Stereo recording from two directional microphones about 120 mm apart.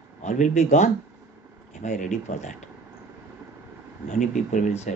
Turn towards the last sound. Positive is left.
turn(degrees=90)